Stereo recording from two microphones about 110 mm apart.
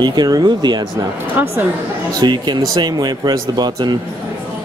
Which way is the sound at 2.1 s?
40° right (ahead or behind).